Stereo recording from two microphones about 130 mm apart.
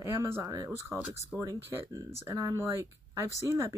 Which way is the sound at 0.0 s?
20° right (ahead or behind).